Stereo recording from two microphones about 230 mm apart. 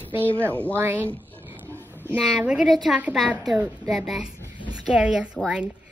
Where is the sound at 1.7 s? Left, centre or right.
Centre.